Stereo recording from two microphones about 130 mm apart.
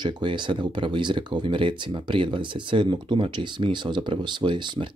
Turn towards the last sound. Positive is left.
turn(degrees=-35)  # may be behind; listen again after turning